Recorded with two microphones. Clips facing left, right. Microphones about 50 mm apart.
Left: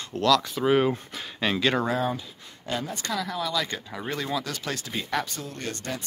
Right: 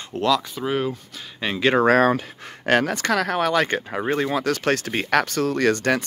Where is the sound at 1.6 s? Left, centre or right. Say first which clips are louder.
Right 8 dB; right.